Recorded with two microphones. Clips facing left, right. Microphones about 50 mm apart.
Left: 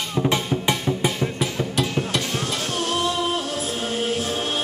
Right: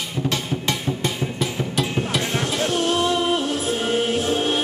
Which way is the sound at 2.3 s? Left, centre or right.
Right.